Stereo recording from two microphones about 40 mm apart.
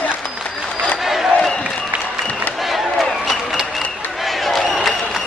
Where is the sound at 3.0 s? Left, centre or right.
Centre.